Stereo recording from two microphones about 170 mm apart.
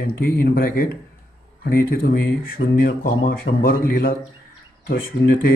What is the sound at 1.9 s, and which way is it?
Speech, 60° left (ahead or behind).